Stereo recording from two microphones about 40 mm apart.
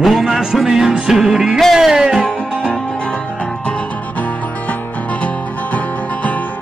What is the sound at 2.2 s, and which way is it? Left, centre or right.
Music, left.